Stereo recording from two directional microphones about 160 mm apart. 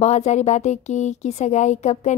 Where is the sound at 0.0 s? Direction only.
45° left (ahead or behind).